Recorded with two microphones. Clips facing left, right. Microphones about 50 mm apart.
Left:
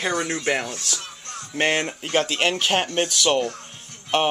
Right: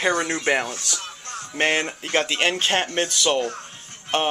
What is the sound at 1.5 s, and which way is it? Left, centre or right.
Speech, centre.